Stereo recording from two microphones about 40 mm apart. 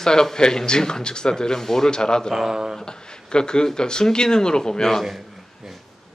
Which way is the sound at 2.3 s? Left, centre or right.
Centre.